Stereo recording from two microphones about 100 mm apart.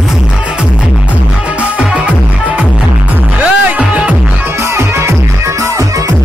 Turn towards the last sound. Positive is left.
turn(degrees=-35)  # may be behind; listen again after turning